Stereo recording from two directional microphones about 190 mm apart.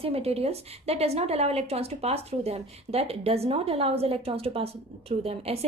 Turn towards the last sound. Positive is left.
turn(degrees=-30)  # may be behind; listen again after turning